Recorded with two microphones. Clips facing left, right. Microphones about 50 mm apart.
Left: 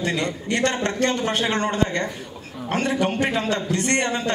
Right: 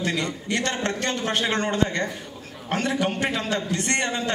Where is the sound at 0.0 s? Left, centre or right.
Left.